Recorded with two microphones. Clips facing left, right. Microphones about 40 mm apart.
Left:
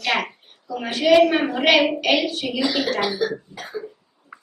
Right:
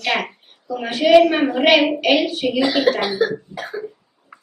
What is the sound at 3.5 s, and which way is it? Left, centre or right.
Cough, centre.